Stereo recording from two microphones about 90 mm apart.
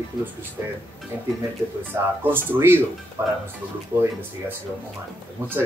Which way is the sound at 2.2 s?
25° right (ahead or behind).